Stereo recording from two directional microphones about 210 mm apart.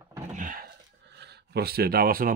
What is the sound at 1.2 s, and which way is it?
Speech, 50° right (ahead or behind).